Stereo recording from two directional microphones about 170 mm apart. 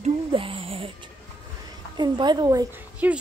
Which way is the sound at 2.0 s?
25° right (ahead or behind).